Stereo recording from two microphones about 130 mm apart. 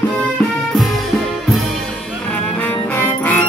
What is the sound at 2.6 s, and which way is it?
Music, 15° left (ahead or behind).